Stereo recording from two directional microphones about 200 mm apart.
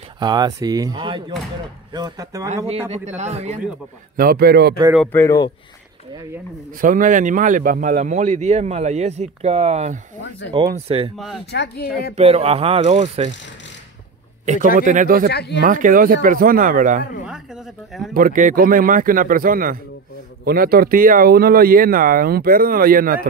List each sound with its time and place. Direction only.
0.2 s speech: 20° right (ahead or behind)
2.5 s speech: 30° right (ahead or behind)
4.2 s speech: 50° right (ahead or behind)
4.9 s speech: 5° left (ahead or behind)
6.8 s speech: 40° right (ahead or behind)
10.5 s speech: 20° right (ahead or behind)
11.1 s speech: centre (ahead or behind)
11.5 s speech: 55° left (ahead or behind)
12.2 s speech: 30° right (ahead or behind)
14.4 s a man's voice: 35° right (ahead or behind)
15.2 s speech: 55° left (ahead or behind)
15.6 s speech: 40° right (ahead or behind)
18.1 s speech: 45° right (ahead or behind)